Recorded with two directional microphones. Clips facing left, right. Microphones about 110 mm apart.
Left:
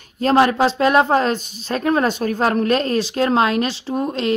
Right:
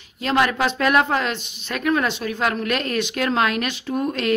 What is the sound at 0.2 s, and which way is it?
A woman's voice, 35° left (ahead or behind).